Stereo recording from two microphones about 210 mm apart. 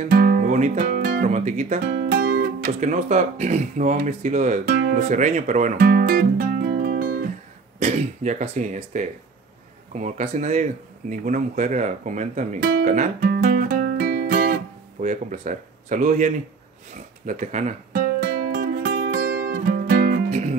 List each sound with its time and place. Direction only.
0.0 s speech: 40° right (ahead or behind)
4.9 s guitar: 35° right (ahead or behind)
7.8 s speech: 35° right (ahead or behind)
17.3 s music: 35° right (ahead or behind)